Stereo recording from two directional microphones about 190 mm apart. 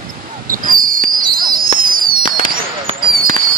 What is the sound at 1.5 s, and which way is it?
Fireworks, 45° right (ahead or behind).